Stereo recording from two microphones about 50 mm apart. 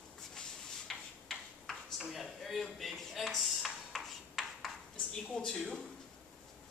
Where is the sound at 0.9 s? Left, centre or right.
Centre.